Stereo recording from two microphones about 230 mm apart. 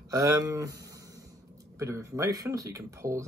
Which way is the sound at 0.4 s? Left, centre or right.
Centre.